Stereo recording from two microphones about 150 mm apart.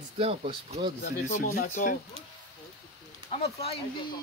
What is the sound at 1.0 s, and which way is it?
Speech, 70° left (ahead or behind).